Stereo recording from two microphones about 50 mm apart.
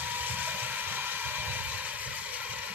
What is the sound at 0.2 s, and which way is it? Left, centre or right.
Vehicle, right.